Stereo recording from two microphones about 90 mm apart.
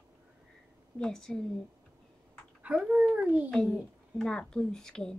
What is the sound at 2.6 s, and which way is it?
Speech, 10° right (ahead or behind).